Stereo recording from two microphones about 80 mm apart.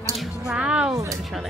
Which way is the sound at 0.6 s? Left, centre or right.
Centre.